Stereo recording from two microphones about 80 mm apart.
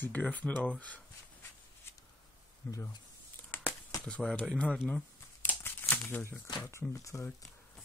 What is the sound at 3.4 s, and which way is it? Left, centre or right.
Crumpling, left.